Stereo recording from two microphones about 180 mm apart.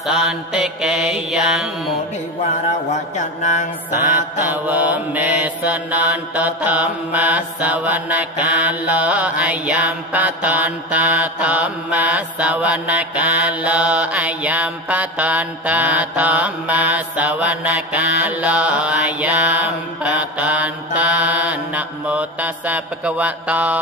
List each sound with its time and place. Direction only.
0.0 s mantra: centre (ahead or behind)
2.4 s mantra: 40° left (ahead or behind)
4.5 s mantra: 10° right (ahead or behind)